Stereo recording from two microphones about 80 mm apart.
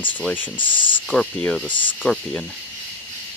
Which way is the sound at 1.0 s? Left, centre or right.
Centre.